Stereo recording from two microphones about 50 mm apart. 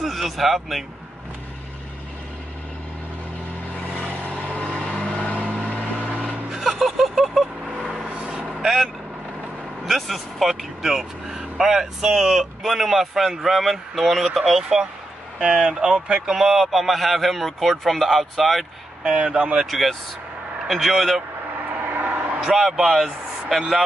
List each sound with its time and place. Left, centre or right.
0.0 s speech: centre
4.3 s vehicle: centre
5.9 s vehicle: right
6.5 s vehicle: centre
8.4 s vehicle: right
8.6 s speech: centre
19.1 s speech: right
19.6 s speech: centre
21.8 s vehicle: right
22.7 s speech: centre